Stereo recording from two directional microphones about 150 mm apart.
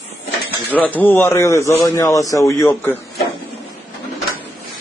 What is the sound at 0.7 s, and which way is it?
A man's voice, 10° left (ahead or behind).